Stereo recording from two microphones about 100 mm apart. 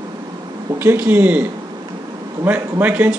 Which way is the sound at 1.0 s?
15° right (ahead or behind).